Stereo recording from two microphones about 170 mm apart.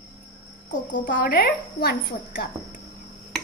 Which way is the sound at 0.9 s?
55° left (ahead or behind).